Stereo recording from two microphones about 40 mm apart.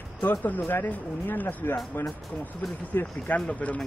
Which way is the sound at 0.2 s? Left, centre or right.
Left.